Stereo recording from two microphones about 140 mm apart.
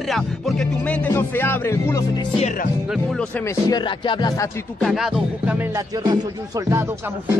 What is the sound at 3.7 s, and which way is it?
Music, 30° left (ahead or behind).